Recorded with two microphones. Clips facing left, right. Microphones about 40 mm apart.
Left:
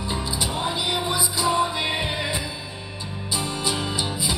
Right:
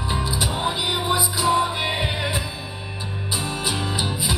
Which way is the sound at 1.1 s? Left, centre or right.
Centre.